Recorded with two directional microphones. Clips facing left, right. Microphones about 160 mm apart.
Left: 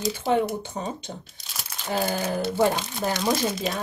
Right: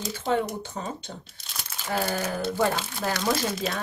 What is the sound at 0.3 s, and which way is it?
Speech, 20° left (ahead or behind).